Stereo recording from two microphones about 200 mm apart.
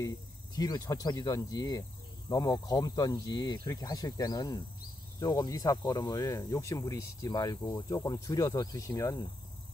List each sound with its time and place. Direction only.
0.6 s speech: 20° left (ahead or behind)